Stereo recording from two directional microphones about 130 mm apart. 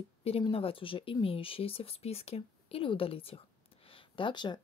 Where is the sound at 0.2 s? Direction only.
45° left (ahead or behind).